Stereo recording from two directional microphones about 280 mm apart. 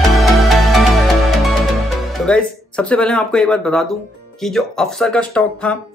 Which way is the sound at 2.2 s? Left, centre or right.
Centre.